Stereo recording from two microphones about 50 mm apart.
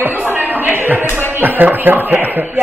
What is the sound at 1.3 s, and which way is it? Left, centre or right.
Speech, right.